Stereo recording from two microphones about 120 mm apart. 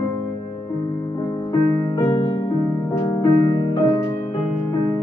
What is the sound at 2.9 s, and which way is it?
Music, 20° left (ahead or behind).